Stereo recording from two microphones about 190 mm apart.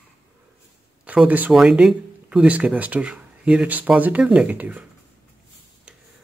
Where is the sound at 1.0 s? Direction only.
10° right (ahead or behind).